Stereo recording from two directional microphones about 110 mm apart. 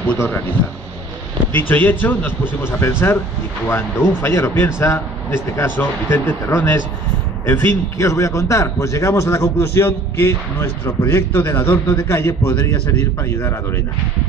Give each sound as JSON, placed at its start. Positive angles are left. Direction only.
{"t": 1.5, "sound": "a man's voice", "side_deg": 20}